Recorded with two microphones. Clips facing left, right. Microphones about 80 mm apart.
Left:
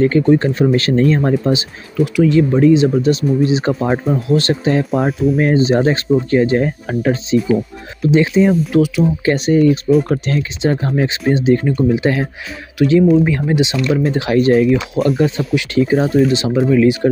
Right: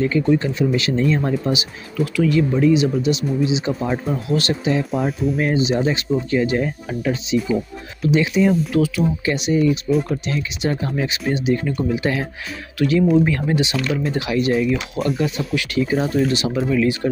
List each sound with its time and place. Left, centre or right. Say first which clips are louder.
0.0 s speech: left 6 dB; left
3.9 s speech: left 6 dB; left
4.9 s speech: left 5 dB; centre
5.4 s speech: left 5 dB; left
9.2 s speech: left 7 dB; left
14.3 s speech: left 7 dB; left
15.0 s speech: left 6 dB; centre
15.2 s speech: left 5 dB; left